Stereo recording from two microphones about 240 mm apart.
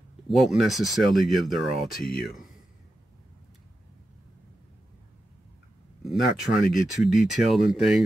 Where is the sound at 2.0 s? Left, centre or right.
Left.